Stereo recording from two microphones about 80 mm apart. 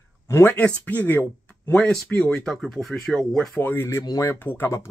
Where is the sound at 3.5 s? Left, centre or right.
Left.